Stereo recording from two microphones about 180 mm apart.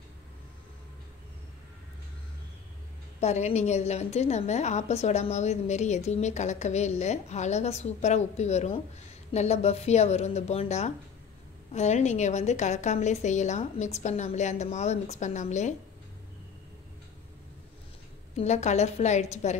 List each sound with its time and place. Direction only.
3.2 s a woman's voice: 40° left (ahead or behind)
18.3 s a woman's voice: 40° left (ahead or behind)